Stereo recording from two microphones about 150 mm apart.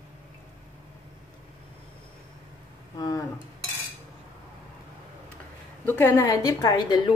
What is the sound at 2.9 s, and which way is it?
Speech, 25° left (ahead or behind).